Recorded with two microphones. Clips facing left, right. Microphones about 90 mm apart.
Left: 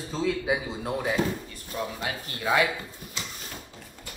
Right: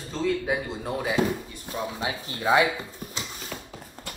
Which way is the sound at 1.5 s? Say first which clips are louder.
Right 1 dB; 20° right (ahead or behind).